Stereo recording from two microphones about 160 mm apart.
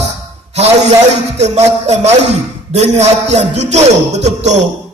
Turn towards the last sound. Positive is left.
turn(degrees=-45)  # may be behind; listen again after turning